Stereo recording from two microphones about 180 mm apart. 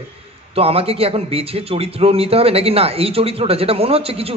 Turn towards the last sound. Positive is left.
turn(degrees=-30)  # may be behind; listen again after turning